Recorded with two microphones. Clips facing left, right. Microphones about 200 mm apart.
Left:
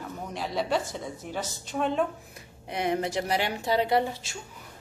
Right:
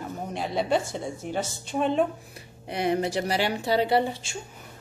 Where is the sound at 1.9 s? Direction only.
35° right (ahead or behind).